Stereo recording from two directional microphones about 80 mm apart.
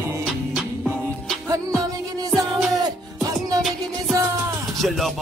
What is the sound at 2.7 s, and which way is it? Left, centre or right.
Music, right.